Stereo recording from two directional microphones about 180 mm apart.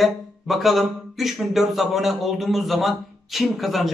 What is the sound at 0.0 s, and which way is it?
Speech, centre (ahead or behind).